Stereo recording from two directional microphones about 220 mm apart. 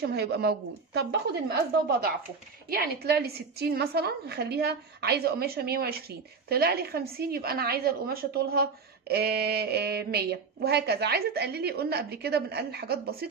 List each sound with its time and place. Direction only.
0.0 s a woman's voice: 45° right (ahead or behind)